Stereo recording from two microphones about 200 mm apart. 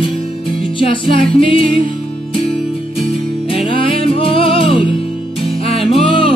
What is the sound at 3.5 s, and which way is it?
Music, 25° left (ahead or behind).